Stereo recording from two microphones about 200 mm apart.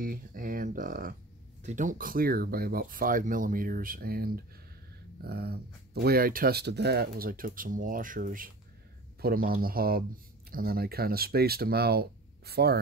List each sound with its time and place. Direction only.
0.0 s speech: 45° right (ahead or behind)